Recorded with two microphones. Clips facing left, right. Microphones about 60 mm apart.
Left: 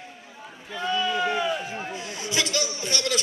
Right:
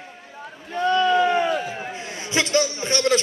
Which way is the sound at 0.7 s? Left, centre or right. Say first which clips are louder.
Right 7 dB; right.